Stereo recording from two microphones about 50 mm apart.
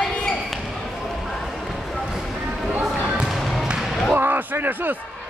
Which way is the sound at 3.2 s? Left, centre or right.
Centre.